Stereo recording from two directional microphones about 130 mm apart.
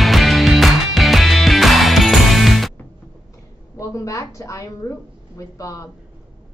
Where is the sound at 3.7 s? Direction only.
25° left (ahead or behind).